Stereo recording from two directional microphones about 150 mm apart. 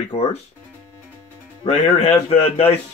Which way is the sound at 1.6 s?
50° left (ahead or behind).